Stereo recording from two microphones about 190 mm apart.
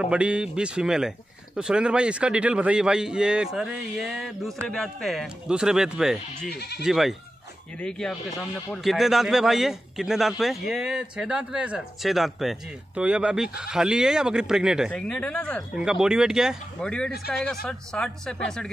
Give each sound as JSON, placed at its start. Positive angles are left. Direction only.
{"t": 0.0, "sound": "a man's voice", "side_deg": -5}
{"t": 6.5, "sound": "speech", "side_deg": 60}
{"t": 6.8, "sound": "a man's voice", "side_deg": 0}